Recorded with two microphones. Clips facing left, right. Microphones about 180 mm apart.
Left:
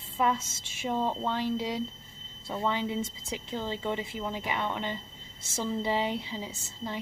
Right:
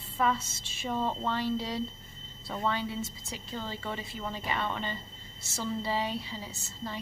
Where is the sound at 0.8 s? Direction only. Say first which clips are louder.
Left 2 dB; 15° left (ahead or behind).